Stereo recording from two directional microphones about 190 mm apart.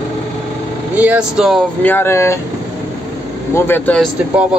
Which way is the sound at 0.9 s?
5° right (ahead or behind).